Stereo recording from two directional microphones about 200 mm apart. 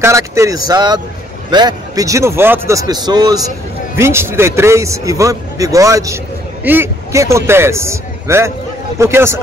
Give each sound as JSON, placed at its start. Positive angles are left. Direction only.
{"t": 0.0, "sound": "a man's voice", "side_deg": -15}